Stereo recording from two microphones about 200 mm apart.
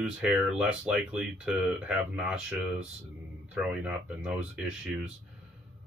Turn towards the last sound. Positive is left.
turn(degrees=-5)  # may be behind; listen again after turning